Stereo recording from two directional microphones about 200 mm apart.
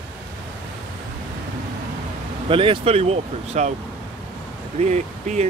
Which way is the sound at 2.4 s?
25° right (ahead or behind).